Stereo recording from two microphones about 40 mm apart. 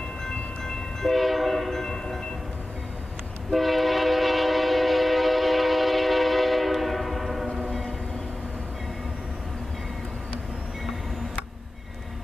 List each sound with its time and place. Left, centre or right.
0.2 s train: centre
1.0 s train: centre
3.5 s train: centre